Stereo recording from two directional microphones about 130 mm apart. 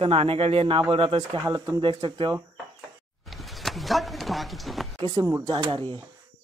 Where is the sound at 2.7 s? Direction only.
Centre (ahead or behind).